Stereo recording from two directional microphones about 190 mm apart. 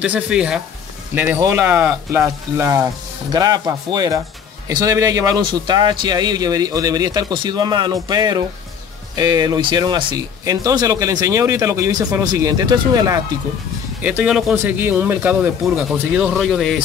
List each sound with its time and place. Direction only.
0.0 s a man's voice: 5° right (ahead or behind)
14.0 s speech: 5° right (ahead or behind)